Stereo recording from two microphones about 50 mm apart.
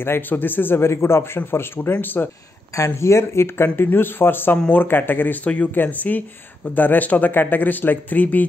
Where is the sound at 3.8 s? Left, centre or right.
Left.